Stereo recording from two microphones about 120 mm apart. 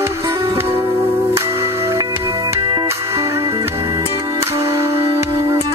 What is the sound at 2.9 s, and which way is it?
Music, 25° right (ahead or behind).